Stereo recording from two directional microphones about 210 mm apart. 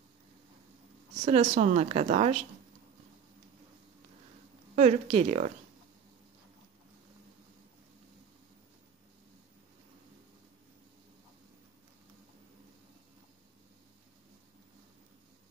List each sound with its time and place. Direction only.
1.2 s speech: 30° right (ahead or behind)
4.7 s speech: 30° right (ahead or behind)